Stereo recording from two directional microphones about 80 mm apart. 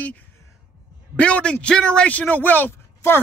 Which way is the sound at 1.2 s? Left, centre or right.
Centre.